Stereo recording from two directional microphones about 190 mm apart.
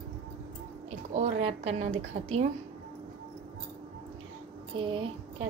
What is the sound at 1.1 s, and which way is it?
A woman's voice, 35° right (ahead or behind).